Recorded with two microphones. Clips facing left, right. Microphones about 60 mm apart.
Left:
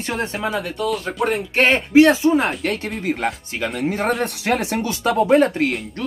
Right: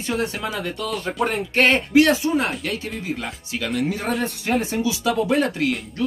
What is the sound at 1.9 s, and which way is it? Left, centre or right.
Speech, left.